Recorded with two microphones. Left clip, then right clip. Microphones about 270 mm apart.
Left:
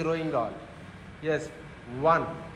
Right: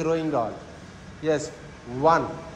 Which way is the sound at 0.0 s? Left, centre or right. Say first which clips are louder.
Right 4 dB; centre.